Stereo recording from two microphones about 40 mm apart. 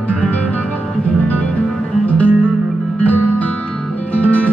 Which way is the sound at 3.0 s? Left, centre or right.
Left.